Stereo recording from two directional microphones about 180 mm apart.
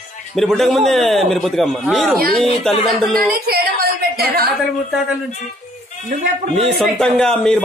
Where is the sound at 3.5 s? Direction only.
55° right (ahead or behind).